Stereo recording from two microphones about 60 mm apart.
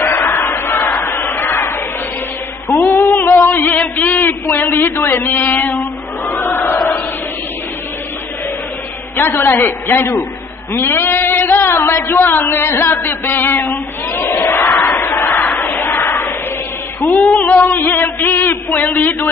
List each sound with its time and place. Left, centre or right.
0.0 s crowd: left
2.7 s music: left
3.4 s a sound: left
4.9 s music: left
5.8 s a sound: left
9.1 s music: left
10.7 s speech: left
15.0 s crowd: left
15.8 s a sound: left
17.0 s music: left
17.7 s music: left